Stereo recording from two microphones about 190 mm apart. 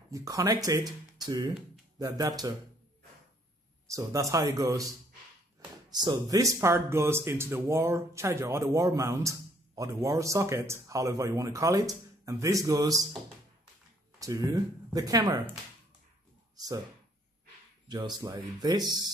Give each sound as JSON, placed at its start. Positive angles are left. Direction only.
{"t": 0.1, "sound": "speech", "side_deg": -15}
{"t": 3.9, "sound": "speech", "side_deg": -15}
{"t": 6.0, "sound": "speech", "side_deg": -20}
{"t": 14.2, "sound": "speech", "side_deg": -20}
{"t": 16.5, "sound": "speech", "side_deg": -20}
{"t": 17.8, "sound": "speech", "side_deg": -20}